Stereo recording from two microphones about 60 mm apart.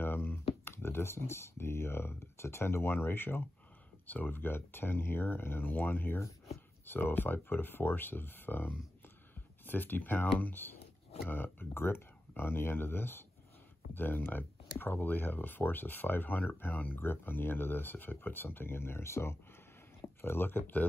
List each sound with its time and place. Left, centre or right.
0.0 s speech: left